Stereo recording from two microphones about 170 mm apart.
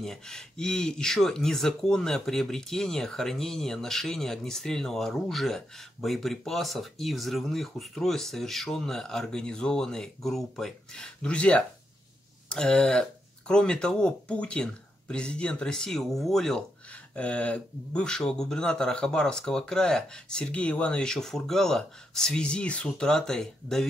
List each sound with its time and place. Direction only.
0.0 s speech: 5° left (ahead or behind)